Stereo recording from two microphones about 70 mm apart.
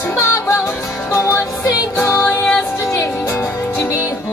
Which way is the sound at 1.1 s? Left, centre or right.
Left.